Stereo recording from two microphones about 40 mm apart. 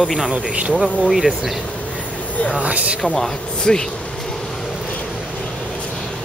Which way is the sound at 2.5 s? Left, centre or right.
Right.